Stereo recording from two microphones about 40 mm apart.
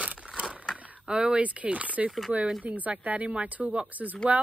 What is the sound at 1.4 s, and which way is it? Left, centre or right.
Speech, right.